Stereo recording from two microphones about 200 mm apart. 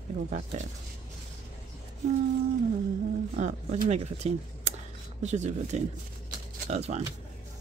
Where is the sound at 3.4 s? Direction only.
35° right (ahead or behind).